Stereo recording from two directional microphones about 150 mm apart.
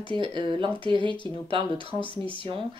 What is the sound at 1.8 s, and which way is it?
Speech, 35° left (ahead or behind).